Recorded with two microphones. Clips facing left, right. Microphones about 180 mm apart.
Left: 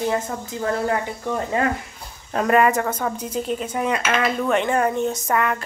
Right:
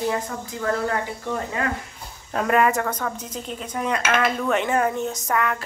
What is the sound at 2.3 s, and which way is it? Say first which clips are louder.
A woman's voice: left 2 dB; centre (ahead or behind).